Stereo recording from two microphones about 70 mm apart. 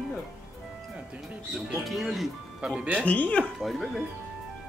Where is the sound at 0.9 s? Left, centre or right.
Centre.